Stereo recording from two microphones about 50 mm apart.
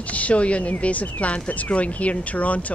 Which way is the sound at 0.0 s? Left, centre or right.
Left.